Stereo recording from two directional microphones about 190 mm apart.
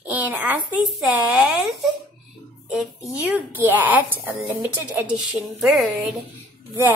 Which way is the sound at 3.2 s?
10° right (ahead or behind).